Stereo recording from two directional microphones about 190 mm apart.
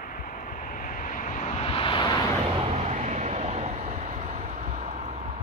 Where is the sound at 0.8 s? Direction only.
45° left (ahead or behind); by 2.2 s 25° left (ahead or behind).